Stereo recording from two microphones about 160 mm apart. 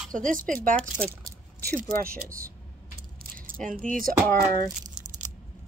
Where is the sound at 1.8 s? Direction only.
60° right (ahead or behind).